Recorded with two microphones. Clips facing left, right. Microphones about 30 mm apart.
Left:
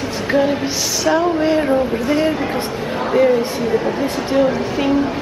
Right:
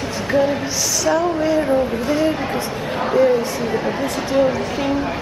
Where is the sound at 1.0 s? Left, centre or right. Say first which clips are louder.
Left 3 dB; left.